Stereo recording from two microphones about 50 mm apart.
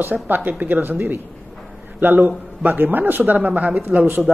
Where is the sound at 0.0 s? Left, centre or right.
Right.